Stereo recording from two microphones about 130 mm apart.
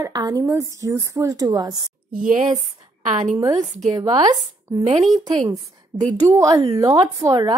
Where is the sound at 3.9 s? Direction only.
30° right (ahead or behind).